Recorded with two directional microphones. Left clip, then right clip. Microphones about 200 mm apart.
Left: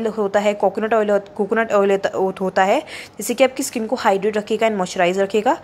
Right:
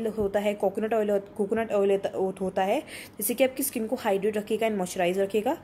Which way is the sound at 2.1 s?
15° left (ahead or behind).